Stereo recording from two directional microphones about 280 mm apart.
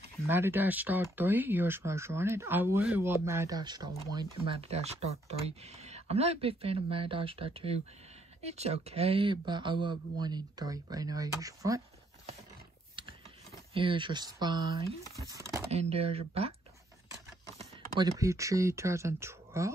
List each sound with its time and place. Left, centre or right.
0.3 s speech: centre
13.7 s speech: centre
15.7 s speech: right
17.6 s speech: centre